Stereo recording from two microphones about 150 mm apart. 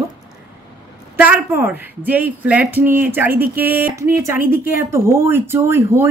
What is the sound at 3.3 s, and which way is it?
Speech, 80° right.